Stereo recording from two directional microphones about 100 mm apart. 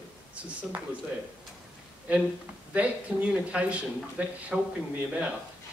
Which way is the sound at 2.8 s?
15° right (ahead or behind).